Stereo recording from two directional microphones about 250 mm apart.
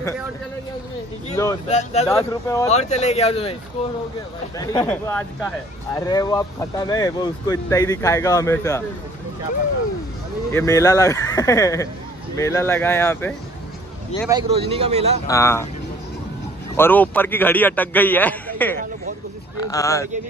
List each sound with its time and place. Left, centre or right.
1.3 s speech: centre
1.7 s speech: left
2.0 s speech: centre
2.7 s speech: left
4.6 s speech: centre
10.5 s speech: centre
14.3 s speech: right
15.2 s speech: centre
16.7 s speech: centre